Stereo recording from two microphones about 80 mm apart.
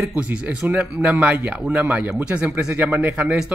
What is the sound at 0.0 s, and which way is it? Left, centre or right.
A man's voice, centre.